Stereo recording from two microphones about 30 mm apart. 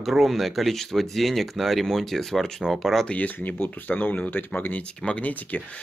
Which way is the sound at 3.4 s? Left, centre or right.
Left.